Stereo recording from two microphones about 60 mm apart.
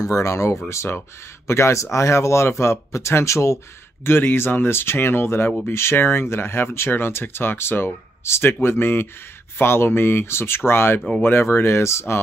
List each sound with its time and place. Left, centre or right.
0.0 s speech: left
4.0 s speech: left